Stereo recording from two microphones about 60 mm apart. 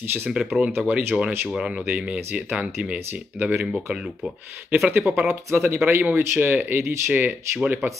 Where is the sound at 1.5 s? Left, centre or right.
Centre.